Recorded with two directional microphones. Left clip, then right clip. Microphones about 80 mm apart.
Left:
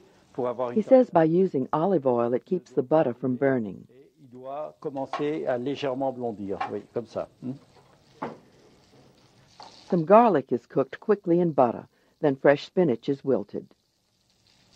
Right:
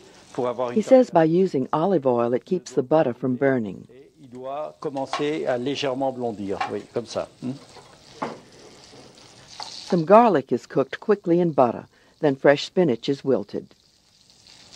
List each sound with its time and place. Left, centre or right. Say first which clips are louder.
0.3 s speech: right 3 dB; left
9.5 s speech: right 4 dB; left